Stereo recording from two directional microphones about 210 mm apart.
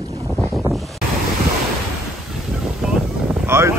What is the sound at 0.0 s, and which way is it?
Boat, 15° right (ahead or behind).